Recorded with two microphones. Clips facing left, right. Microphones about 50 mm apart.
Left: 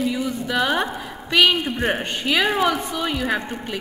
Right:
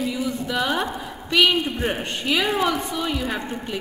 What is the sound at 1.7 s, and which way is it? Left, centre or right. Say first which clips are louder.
Speech: left 3 dB; centre.